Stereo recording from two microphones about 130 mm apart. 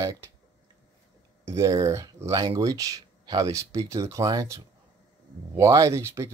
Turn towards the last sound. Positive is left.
turn(degrees=-20)  # may be behind; listen again after turning